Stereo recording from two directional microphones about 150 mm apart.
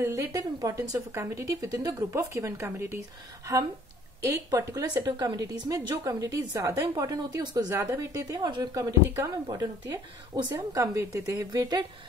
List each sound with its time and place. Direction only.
0.0 s a woman's voice: 20° right (ahead or behind)
4.2 s a woman's voice: 20° right (ahead or behind)